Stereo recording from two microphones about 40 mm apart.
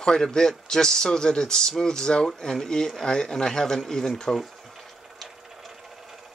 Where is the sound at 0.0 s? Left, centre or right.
Centre.